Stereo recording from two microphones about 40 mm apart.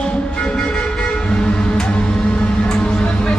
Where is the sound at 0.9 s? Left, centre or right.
Left.